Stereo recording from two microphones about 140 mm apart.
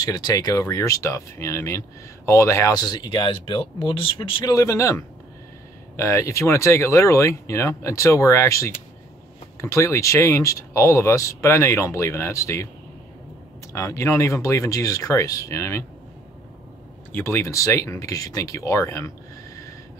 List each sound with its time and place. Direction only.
0.0 s speech: 30° left (ahead or behind)
4.6 s speech: 20° left (ahead or behind)
13.7 s speech: 20° left (ahead or behind)
17.1 s speech: 15° left (ahead or behind)